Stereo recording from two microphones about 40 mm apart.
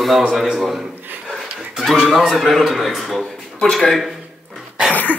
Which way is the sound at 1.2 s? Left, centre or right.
Centre.